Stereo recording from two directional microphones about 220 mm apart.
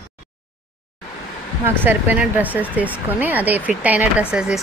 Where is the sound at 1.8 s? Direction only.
10° right (ahead or behind).